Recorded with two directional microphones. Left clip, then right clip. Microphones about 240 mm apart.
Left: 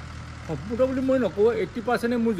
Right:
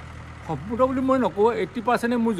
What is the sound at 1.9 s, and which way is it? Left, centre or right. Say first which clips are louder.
Speech: right 2 dB; centre.